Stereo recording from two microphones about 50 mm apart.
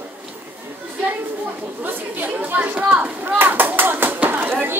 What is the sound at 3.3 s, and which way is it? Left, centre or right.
Chop, right.